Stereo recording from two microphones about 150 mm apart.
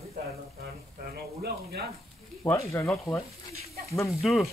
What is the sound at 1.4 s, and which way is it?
Speech, 90° right.